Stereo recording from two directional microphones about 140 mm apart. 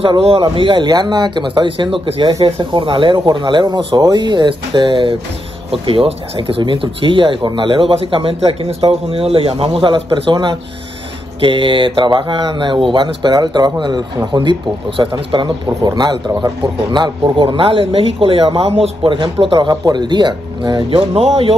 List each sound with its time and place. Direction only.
0.0 s speech: 40° right (ahead or behind)